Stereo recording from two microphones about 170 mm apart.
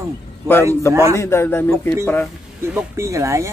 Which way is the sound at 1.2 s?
15° left (ahead or behind).